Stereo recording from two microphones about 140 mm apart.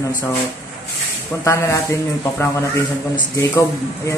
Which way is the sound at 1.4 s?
20° left (ahead or behind).